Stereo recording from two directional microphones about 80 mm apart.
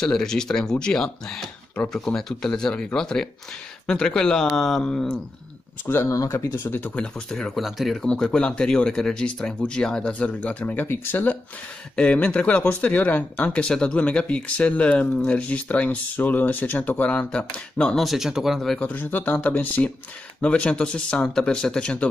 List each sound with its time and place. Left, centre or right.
0.0 s speech: centre
5.9 s speech: left
7.0 s speech: centre; by 11.3 s left
11.9 s speech: centre
18.0 s speech: centre
18.8 s speech: left